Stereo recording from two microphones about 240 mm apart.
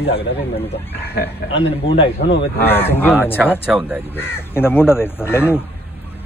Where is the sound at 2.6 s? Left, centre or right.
Centre.